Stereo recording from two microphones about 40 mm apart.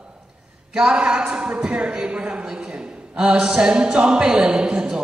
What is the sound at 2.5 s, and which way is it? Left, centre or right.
Speech, right.